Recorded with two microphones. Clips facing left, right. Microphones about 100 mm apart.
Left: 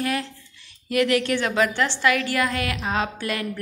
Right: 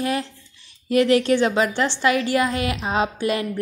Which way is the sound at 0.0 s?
25° right (ahead or behind).